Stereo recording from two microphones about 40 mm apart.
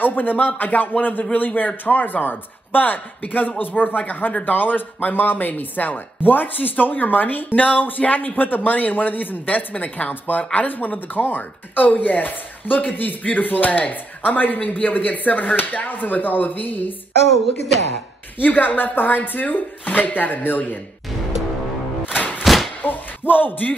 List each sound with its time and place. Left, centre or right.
0.0 s chopping: left
18.4 s chopping: left
22.4 s thump: centre
22.8 s a sound: left